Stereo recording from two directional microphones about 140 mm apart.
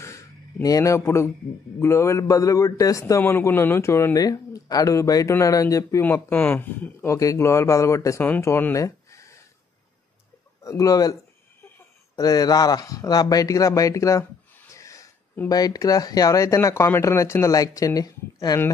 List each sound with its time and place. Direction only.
0.0 s a sound: 20° left (ahead or behind)
1.8 s a man's voice: 20° left (ahead or behind)
10.6 s a man's voice: 25° left (ahead or behind)
12.2 s a man's voice: 25° left (ahead or behind)